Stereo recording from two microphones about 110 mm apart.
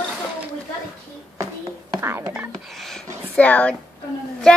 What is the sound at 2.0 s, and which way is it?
Speech, 20° right (ahead or behind).